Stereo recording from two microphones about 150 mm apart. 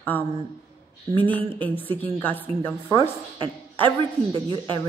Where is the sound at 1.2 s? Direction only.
10° left (ahead or behind).